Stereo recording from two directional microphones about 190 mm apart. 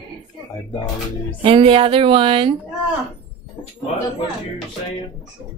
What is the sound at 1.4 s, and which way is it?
A woman's voice, 30° right (ahead or behind).